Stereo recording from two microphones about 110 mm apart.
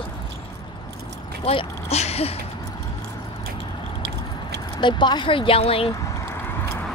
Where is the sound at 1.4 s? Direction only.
70° left (ahead or behind).